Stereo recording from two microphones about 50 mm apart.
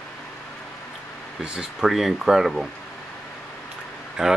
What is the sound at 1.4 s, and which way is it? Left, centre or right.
Speech, centre.